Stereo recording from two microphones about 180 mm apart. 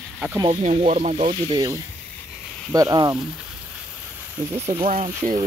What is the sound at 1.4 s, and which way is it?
Speech, 20° right (ahead or behind).